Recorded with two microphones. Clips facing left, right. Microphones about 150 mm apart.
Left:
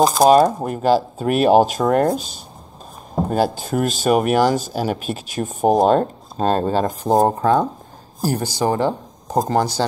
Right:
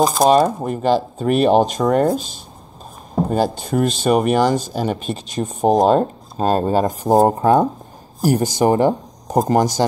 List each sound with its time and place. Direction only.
0.0 s speech: centre (ahead or behind); by 9.8 s 15° right (ahead or behind)